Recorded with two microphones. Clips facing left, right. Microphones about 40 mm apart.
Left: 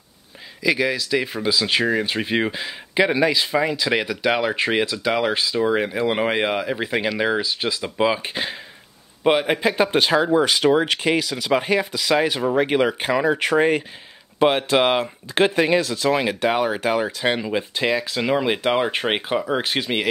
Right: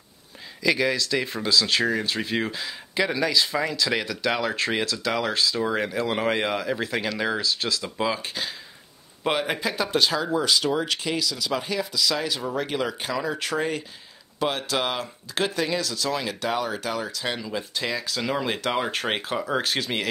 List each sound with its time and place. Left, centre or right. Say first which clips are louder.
0.6 s speech: left 2 dB; centre; by 8.5 s left
9.2 s speech: left 7 dB; centre